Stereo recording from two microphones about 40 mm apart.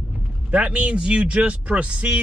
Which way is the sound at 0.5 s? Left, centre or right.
Right.